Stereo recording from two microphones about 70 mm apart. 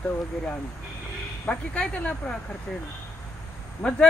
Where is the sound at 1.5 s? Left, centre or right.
Centre.